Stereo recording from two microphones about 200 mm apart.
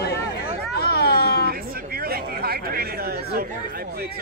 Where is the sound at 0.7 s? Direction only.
50° left (ahead or behind).